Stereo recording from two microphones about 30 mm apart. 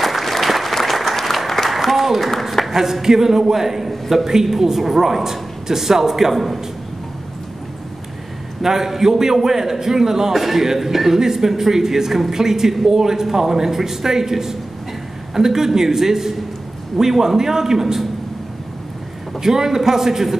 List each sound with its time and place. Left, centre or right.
0.0 s applause: centre
2.7 s speech: centre
8.6 s speech: centre
19.4 s speech: centre